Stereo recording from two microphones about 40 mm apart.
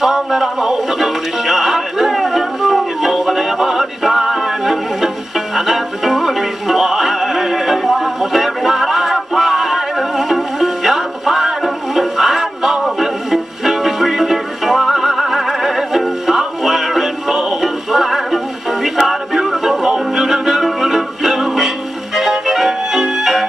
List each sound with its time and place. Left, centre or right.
0.0 s music: centre